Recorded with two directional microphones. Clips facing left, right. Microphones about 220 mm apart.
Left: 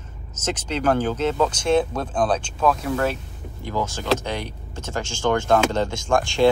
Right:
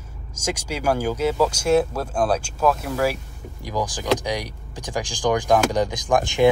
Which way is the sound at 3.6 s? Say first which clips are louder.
Even; 15° right (ahead or behind).